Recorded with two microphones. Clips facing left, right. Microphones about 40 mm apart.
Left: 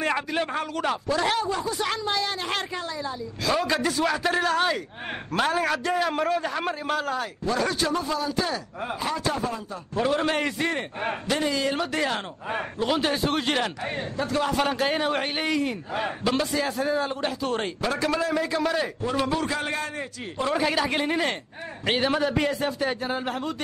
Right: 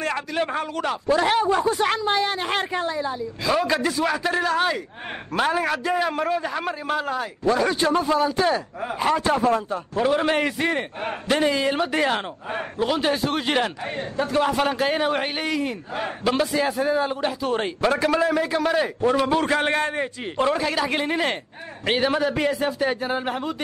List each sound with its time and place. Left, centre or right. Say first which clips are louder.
0.0 s speech: left 1 dB; centre
0.4 s a man's voice: right 2 dB; centre
1.0 s a man's voice: right 7 dB; centre
1.4 s speech: right 7 dB; right
3.5 s a man's voice: right 3 dB; centre
7.8 s a man's voice: right 6 dB; right
9.9 s a man's voice: right 3 dB; centre
11.2 s speech: right 6 dB; right
12.8 s a man's voice: right 2 dB; centre
14.2 s speech: right 4 dB; centre
14.5 s a man's voice: right 2 dB; centre
17.8 s a man's voice: right 6 dB; centre
19.4 s a man's voice: right 6 dB; right
20.5 s a man's voice: right 1 dB; centre